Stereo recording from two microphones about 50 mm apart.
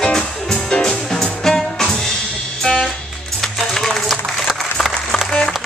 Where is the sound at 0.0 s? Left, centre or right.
Centre.